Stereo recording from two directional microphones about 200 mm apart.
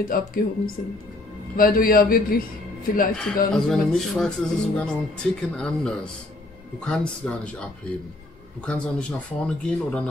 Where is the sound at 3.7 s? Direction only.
Centre (ahead or behind).